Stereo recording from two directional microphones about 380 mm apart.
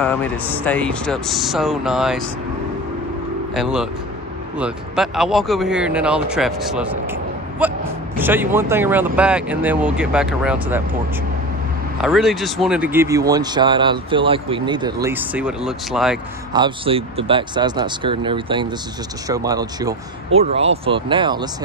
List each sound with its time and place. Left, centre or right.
0.0 s speech: centre
3.5 s speech: centre
12.0 s speech: centre
16.6 s speech: centre